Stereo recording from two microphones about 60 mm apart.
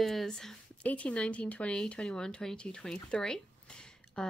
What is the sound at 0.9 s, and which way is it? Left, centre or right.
Speech, left.